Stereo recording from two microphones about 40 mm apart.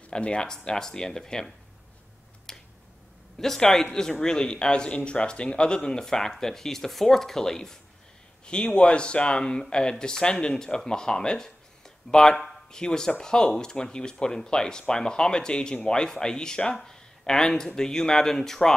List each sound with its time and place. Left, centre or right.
0.1 s speech: left
2.5 s finger snapping: centre
3.3 s speech: centre
8.5 s speech: left